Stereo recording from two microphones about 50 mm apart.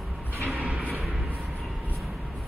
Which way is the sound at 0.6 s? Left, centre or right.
Right.